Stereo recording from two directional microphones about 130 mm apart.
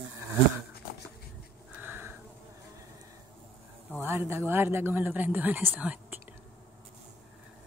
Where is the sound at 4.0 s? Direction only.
15° right (ahead or behind).